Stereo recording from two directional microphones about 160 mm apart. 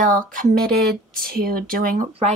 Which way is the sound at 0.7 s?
75° right (ahead or behind).